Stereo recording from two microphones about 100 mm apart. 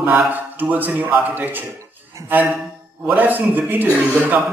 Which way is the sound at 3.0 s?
15° right (ahead or behind).